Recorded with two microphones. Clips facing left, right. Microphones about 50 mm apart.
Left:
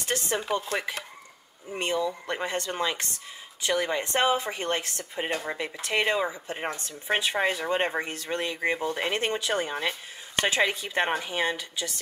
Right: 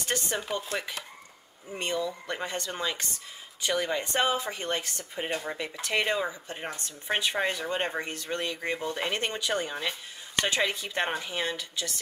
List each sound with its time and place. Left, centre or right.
0.1 s speech: centre